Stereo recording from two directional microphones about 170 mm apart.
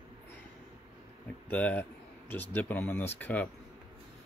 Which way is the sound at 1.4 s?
10° left (ahead or behind).